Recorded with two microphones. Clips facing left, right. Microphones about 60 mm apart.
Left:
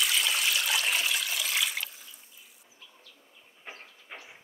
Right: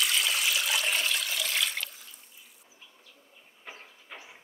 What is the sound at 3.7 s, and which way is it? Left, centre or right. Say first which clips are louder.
Train: left 1 dB; left.